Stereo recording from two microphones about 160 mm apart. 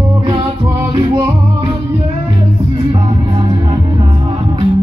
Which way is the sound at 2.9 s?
35° right (ahead or behind).